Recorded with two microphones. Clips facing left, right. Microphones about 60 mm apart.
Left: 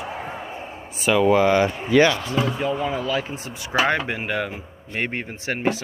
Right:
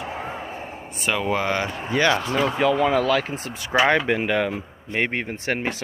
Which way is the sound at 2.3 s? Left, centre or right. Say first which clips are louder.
Right 2 dB; right.